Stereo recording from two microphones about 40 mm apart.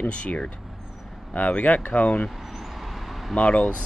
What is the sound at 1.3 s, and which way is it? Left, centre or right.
Speech, left.